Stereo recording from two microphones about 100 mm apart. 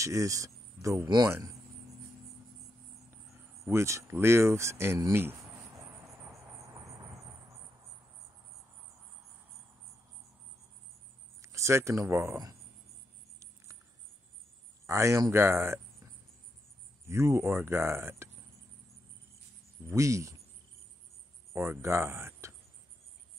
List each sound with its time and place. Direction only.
0.0 s speech: 35° right (ahead or behind)
1.0 s speech: 50° right (ahead or behind)
3.6 s speech: 30° right (ahead or behind)
11.4 s speech: 30° right (ahead or behind)
14.9 s speech: 30° right (ahead or behind)
17.0 s speech: 30° right (ahead or behind)
19.9 s speech: 30° right (ahead or behind)
21.5 s speech: 25° right (ahead or behind)